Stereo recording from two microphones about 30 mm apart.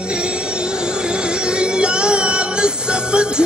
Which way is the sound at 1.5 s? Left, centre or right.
Right.